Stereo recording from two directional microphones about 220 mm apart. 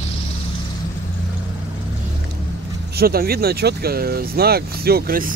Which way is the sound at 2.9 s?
45° right (ahead or behind).